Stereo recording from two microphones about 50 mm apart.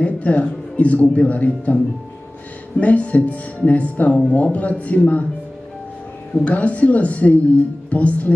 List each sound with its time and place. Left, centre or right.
0.0 s a man's voice: left
2.8 s a man's voice: left
6.3 s a man's voice: left